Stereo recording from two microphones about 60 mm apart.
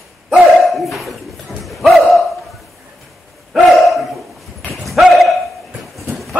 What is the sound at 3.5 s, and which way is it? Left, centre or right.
Dog, centre.